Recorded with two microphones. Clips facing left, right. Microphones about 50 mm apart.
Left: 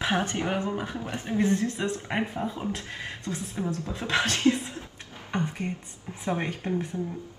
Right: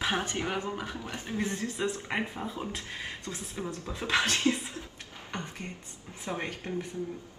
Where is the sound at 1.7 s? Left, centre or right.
Left.